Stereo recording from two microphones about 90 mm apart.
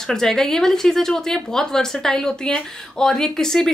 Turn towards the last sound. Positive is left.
turn(degrees=5)  # may be behind; listen again after turning